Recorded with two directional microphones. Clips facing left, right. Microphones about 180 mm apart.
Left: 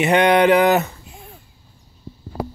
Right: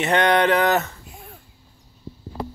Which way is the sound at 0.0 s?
10° left (ahead or behind).